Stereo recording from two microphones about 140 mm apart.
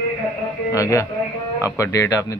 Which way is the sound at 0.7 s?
25° left (ahead or behind).